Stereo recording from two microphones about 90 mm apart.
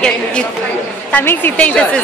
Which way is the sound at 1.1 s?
20° left (ahead or behind).